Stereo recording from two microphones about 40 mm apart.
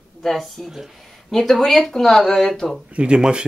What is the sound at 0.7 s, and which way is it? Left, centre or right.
Speech, centre.